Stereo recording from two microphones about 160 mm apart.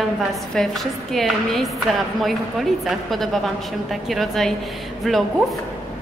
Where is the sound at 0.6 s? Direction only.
5° left (ahead or behind).